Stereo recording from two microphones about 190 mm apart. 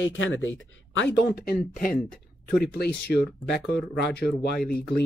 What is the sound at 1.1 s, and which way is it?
Speech, 55° left (ahead or behind).